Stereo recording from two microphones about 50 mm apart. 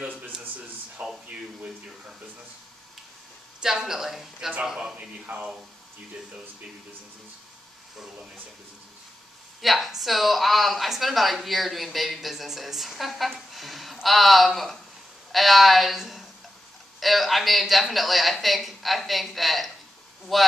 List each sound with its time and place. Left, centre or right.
1.0 s a sound: right
1.3 s speech: centre
3.6 s speech: centre
5.2 s speech: right
9.6 s speech: centre